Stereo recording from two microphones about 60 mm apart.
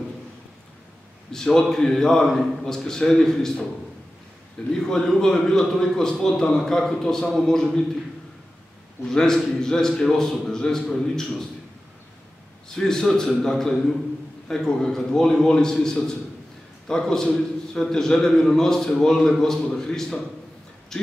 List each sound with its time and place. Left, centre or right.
1.3 s a man's voice: centre
4.7 s a man's voice: centre
9.1 s a man's voice: centre
12.6 s a man's voice: centre